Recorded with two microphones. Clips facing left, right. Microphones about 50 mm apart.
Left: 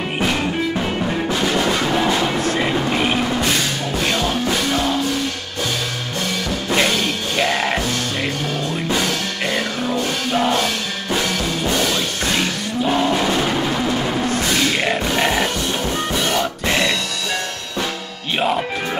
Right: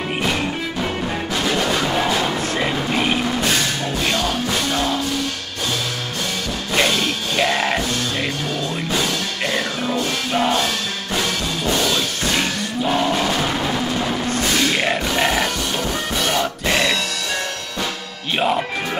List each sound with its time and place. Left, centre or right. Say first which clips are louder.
0.2 s music: left 2 dB; centre
1.6 s music: left 1 dB; centre
4.3 s music: left 2 dB; centre
7.3 s music: even; centre
9.5 s music: left 1 dB; centre
11.7 s music: right 1 dB; left
12.8 s a sound: left 1 dB; centre
13.1 s music: left 2 dB; centre
16.3 s grunt: even; centre